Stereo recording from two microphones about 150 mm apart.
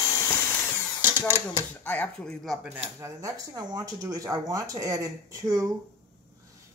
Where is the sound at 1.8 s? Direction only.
10° left (ahead or behind).